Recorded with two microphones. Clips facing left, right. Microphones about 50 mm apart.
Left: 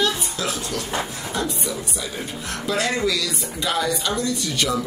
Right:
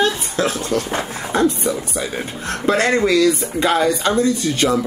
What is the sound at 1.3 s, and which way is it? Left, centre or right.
Speech, right.